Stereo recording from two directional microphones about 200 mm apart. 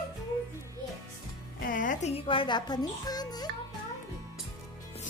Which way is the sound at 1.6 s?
40° left (ahead or behind).